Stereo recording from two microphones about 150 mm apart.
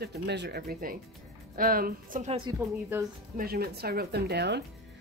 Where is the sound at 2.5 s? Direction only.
25° right (ahead or behind).